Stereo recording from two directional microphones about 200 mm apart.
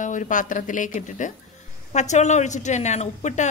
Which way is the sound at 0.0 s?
40° left (ahead or behind).